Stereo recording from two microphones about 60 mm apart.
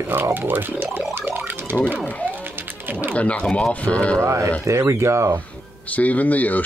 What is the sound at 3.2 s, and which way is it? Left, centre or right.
Speech, centre.